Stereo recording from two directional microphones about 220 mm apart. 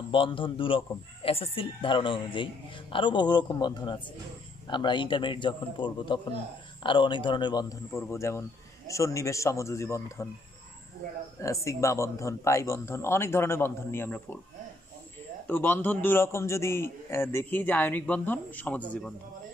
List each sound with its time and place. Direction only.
0.1 s a man's voice: 25° left (ahead or behind)
11.4 s a man's voice: 15° left (ahead or behind)
15.4 s a man's voice: 10° left (ahead or behind)